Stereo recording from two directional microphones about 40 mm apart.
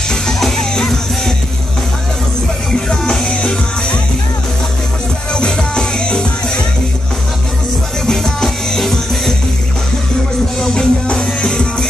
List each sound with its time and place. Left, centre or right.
0.1 s music: centre
5.3 s music: left
8.1 s music: centre
10.6 s music: centre